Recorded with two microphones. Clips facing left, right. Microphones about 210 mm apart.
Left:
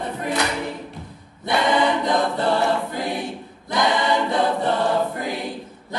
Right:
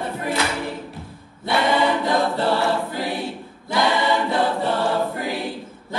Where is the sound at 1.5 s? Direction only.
20° left (ahead or behind).